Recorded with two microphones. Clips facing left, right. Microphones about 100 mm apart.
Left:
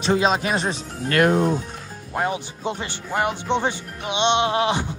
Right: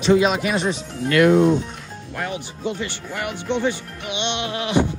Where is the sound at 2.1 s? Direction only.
25° left (ahead or behind).